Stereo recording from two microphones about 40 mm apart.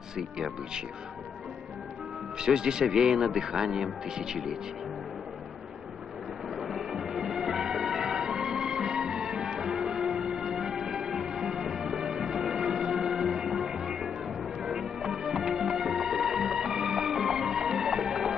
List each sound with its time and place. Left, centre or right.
0.2 s speech: centre
2.3 s speech: centre
6.5 s music: centre